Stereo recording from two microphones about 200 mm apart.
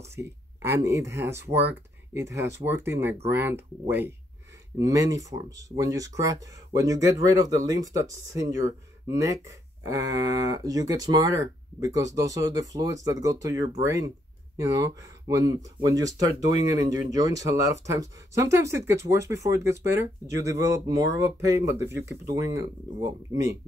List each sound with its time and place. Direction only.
0.0 s speech: 15° right (ahead or behind)
4.7 s speech: 15° right (ahead or behind)